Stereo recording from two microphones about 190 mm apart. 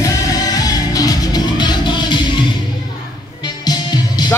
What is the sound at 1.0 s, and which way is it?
Music, 20° left (ahead or behind).